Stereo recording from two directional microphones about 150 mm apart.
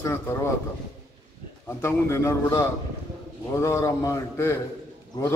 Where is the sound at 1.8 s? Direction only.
15° left (ahead or behind).